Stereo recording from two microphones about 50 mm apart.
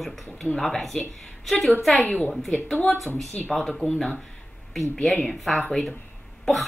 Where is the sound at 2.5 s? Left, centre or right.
Centre.